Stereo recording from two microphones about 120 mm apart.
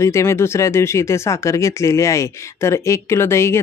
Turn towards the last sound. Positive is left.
turn(degrees=20)  # may be behind; listen again after turning